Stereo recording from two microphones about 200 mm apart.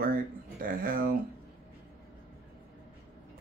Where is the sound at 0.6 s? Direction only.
45° right (ahead or behind).